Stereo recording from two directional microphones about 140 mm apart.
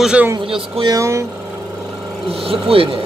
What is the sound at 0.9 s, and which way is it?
Speech, 20° right (ahead or behind).